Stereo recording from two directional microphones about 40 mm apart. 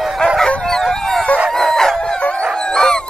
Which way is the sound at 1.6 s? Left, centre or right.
Centre.